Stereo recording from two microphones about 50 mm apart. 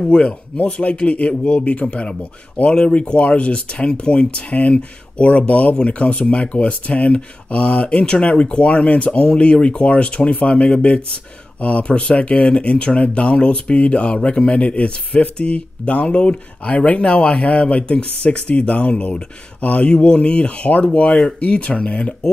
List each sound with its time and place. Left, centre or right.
0.0 s speech: centre